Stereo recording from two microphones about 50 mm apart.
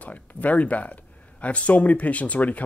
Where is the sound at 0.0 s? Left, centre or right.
Left.